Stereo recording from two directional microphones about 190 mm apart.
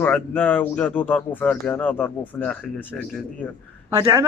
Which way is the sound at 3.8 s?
15° right (ahead or behind).